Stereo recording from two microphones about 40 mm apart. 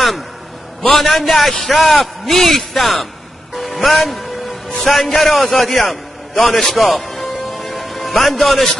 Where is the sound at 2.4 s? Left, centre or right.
Centre.